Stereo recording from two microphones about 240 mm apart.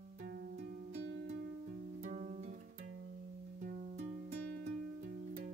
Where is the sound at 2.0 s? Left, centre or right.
Right.